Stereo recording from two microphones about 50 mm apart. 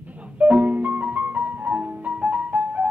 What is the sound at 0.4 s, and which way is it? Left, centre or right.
Music, right.